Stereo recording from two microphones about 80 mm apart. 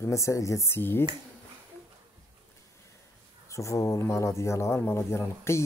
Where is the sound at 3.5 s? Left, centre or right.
Left.